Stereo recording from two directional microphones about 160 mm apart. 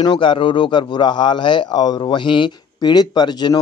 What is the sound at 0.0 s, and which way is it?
Speech, 30° left (ahead or behind).